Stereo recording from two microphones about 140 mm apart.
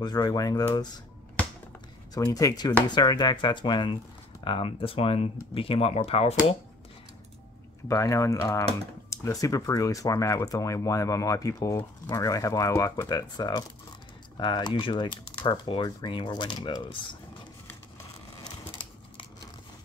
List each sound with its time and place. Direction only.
0.0 s speech: 30° left (ahead or behind)
2.1 s speech: 25° left (ahead or behind); by 6.3 s 45° left (ahead or behind)
7.9 s speech: 20° left (ahead or behind)